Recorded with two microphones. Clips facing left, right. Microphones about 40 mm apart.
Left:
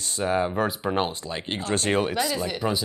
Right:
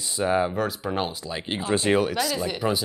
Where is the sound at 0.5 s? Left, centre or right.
Centre.